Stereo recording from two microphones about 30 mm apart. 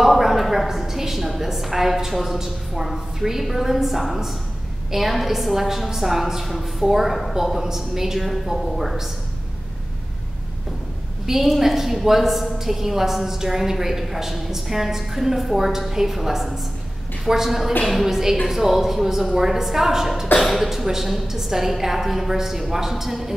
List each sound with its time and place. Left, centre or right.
0.0 s a sound: centre
0.8 s a woman's voice: centre
1.2 s a woman's voice: centre
8.5 s a woman's voice: right
11.2 s a woman's voice: centre
20.3 s speech: centre
20.8 s a woman's voice: centre